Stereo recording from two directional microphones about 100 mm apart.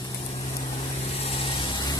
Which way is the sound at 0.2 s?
90° left.